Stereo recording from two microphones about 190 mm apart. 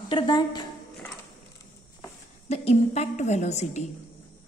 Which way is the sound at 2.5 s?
35° left (ahead or behind).